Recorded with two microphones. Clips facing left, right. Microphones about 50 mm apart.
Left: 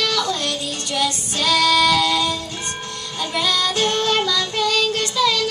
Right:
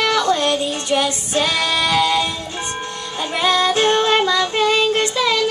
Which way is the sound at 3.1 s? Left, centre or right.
Right.